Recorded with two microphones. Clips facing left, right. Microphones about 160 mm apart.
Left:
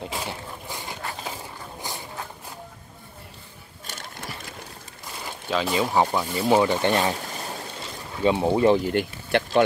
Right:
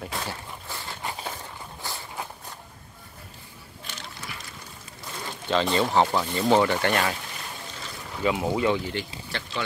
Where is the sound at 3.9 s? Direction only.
45° left (ahead or behind).